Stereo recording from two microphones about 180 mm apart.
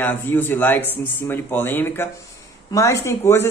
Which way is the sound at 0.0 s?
10° left (ahead or behind).